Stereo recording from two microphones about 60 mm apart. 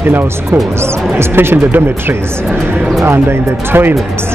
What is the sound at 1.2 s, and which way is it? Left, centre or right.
Speech, right.